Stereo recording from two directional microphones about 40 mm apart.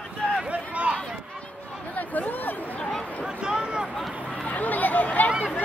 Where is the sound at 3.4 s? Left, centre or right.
Right.